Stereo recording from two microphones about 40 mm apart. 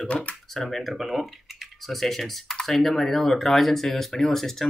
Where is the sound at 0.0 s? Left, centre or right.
Left.